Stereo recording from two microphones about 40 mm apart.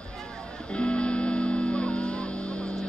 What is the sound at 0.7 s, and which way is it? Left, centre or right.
Music, left.